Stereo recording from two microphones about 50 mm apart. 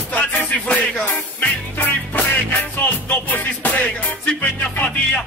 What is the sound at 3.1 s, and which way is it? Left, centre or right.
Music, left.